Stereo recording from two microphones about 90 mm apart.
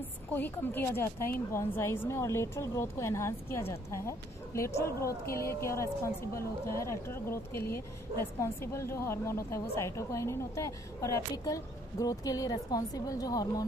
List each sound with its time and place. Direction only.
0.3 s a woman's voice: 20° left (ahead or behind); by 13.7 s 45° left (ahead or behind)